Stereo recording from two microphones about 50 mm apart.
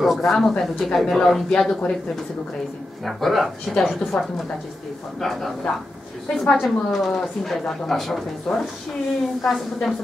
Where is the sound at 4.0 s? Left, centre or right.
Centre.